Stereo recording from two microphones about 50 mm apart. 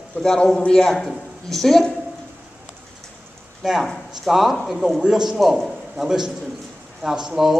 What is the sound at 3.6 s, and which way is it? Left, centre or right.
A man's voice, centre.